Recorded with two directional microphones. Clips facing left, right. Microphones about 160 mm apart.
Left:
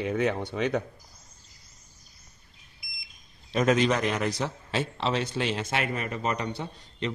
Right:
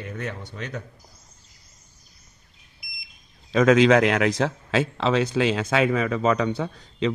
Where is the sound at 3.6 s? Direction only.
90° right.